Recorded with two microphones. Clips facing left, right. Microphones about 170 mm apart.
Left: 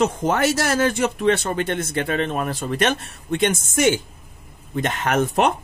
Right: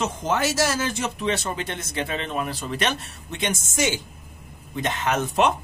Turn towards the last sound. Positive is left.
turn(degrees=55)  # may be behind; listen again after turning